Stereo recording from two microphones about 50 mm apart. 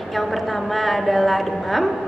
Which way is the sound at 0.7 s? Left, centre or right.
Centre.